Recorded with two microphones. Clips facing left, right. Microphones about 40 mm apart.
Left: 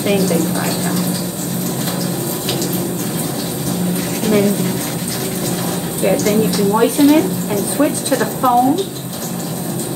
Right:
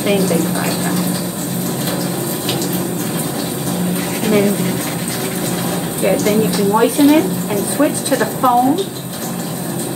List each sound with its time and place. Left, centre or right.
0.0 s speech: centre
3.9 s a sound: centre
6.0 s speech: centre